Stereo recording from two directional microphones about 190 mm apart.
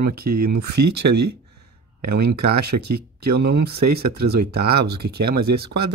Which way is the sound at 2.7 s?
60° right (ahead or behind).